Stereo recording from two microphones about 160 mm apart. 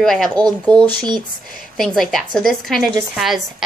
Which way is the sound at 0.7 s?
25° right (ahead or behind).